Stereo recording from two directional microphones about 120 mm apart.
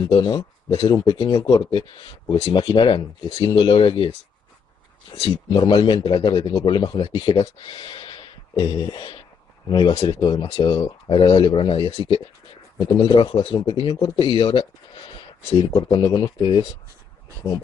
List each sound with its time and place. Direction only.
0.0 s speech: 35° left (ahead or behind)
5.5 s speech: 40° left (ahead or behind)
12.7 s speech: 35° left (ahead or behind)